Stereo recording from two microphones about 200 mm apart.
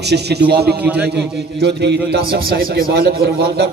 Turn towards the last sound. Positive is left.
turn(degrees=-50)  # may be behind; listen again after turning